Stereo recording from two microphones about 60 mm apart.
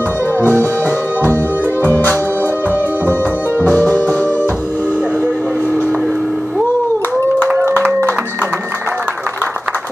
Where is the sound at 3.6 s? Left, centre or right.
Left.